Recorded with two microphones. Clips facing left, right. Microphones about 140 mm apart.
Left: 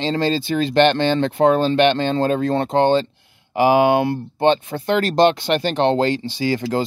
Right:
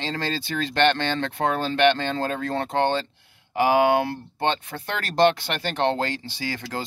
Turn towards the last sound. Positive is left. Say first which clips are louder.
# left 10 dB
turn(degrees=20)  # may be behind; listen again after turning